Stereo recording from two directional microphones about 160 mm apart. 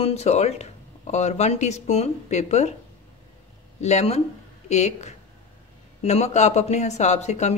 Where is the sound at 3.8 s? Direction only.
45° left (ahead or behind).